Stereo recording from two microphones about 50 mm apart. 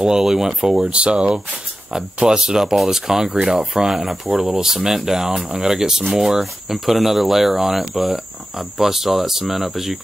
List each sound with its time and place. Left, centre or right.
0.0 s speech: centre